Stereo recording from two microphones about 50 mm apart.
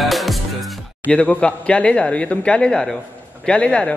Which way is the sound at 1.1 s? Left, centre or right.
Centre.